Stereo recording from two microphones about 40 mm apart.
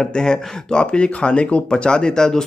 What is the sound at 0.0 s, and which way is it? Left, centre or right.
Speech, centre.